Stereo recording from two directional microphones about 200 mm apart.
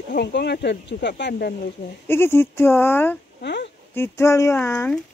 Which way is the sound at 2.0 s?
10° left (ahead or behind).